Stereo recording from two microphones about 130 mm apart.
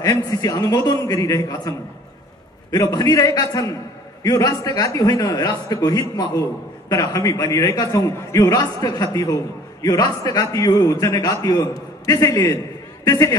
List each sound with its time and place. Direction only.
0.0 s a man's voice: 30° left (ahead or behind)